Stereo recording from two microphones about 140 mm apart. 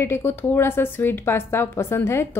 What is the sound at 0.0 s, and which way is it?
Speech, 15° left (ahead or behind).